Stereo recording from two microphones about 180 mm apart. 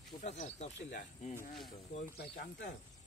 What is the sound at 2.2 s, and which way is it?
Speech, 60° left (ahead or behind).